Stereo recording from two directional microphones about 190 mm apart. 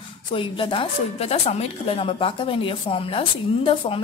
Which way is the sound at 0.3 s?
25° left (ahead or behind).